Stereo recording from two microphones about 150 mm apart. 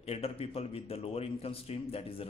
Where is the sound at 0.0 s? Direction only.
40° left (ahead or behind).